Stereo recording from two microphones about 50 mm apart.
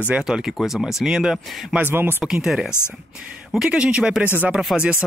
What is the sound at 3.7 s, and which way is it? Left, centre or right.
Speech, centre.